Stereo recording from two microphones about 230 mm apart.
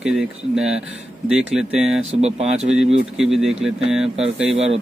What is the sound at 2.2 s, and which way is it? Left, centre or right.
Speech, right.